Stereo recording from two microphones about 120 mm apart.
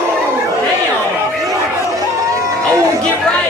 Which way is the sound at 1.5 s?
25° right (ahead or behind).